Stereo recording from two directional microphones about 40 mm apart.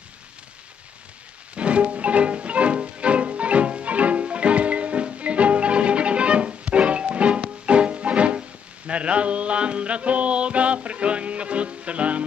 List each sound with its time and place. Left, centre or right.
1.5 s music: right